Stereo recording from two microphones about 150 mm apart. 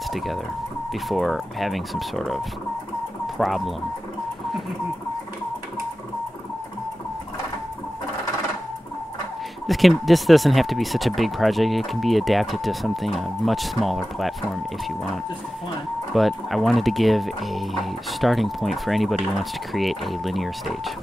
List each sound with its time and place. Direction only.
0.1 s speech: centre (ahead or behind)
9.7 s speech: centre (ahead or behind)
16.1 s speech: centre (ahead or behind)